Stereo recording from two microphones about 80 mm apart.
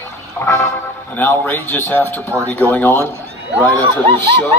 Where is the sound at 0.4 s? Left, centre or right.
Left.